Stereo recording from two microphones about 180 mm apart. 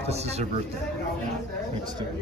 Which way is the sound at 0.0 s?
35° right (ahead or behind).